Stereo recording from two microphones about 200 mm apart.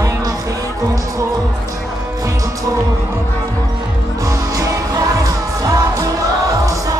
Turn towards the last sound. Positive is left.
turn(degrees=-15)  # may be behind; listen again after turning